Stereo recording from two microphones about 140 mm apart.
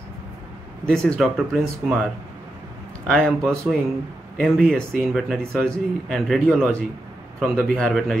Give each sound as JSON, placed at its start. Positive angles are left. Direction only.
{"t": 0.8, "sound": "speech", "side_deg": 5}
{"t": 3.1, "sound": "speech", "side_deg": 0}